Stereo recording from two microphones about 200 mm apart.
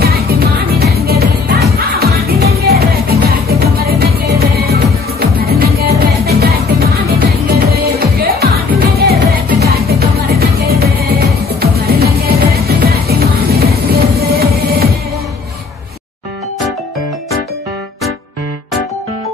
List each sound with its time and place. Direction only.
0.0 s music: 50° right (ahead or behind)